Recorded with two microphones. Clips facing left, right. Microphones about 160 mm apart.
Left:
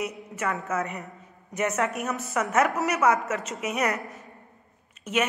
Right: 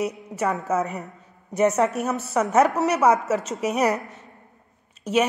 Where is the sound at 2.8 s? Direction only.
Centre (ahead or behind).